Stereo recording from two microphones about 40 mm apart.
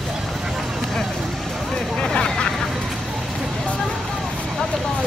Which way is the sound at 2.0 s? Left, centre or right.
Left.